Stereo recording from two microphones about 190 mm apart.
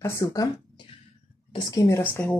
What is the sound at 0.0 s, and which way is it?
A woman's voice, 15° left (ahead or behind).